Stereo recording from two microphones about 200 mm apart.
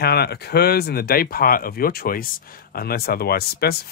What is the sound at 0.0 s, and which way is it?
Speech, 55° left (ahead or behind).